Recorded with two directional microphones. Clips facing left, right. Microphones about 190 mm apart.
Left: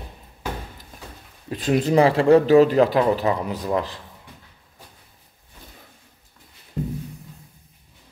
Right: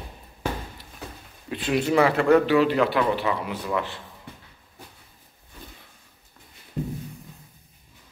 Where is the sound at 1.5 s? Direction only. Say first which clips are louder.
Left 3 dB; 40° left (ahead or behind).